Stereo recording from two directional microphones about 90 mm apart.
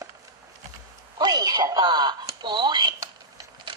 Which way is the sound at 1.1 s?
50° right (ahead or behind).